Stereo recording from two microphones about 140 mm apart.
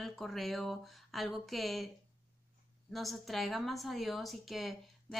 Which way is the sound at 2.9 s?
Centre (ahead or behind).